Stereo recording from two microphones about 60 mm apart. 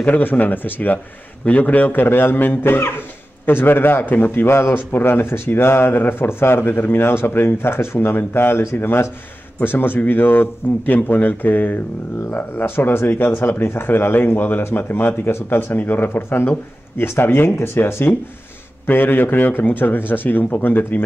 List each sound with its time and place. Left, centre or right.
0.0 s a man's voice: left